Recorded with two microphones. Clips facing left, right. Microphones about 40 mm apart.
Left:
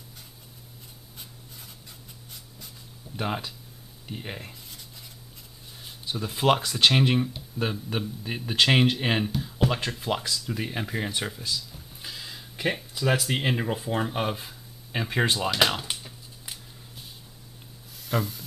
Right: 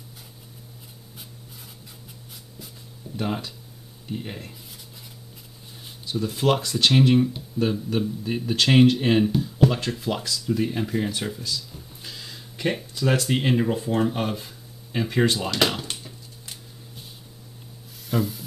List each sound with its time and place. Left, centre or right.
3.2 s speech: centre
6.0 s a man's voice: centre
15.3 s a sound: centre
18.0 s speech: centre